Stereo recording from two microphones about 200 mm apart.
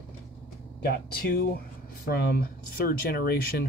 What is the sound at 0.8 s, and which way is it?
Speech, 50° left (ahead or behind).